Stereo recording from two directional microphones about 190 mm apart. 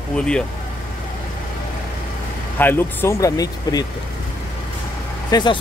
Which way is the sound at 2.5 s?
10° left (ahead or behind).